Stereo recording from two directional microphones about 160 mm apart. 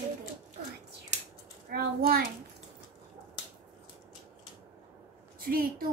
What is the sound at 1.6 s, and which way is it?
Speech, 65° right (ahead or behind).